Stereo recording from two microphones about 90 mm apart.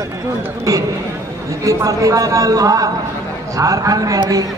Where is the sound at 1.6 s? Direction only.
40° right (ahead or behind).